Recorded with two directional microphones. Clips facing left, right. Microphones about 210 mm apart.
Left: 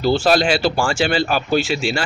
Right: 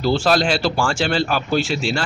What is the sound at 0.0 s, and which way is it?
Speech, centre (ahead or behind).